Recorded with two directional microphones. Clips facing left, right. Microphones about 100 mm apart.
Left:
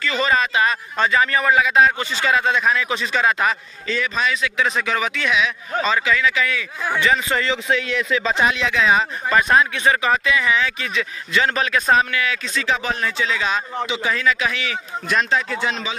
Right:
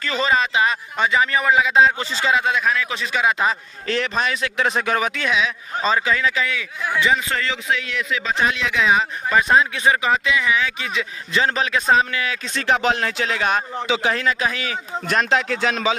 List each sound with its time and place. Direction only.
0.0 s speech: 30° right (ahead or behind)
0.3 s a man's voice: 20° right (ahead or behind)
2.6 s a man's voice: centre (ahead or behind)
3.2 s a man's voice: 15° right (ahead or behind)
3.8 s speech: 60° right (ahead or behind); by 6.4 s 35° right (ahead or behind)
7.4 s a man's voice: 30° left (ahead or behind)
8.5 s a man's voice: 5° right (ahead or behind); by 12.4 s 30° right (ahead or behind)
12.5 s a man's voice: 60° right (ahead or behind)
14.4 s speech: 35° right (ahead or behind)
15.3 s speech: 90° right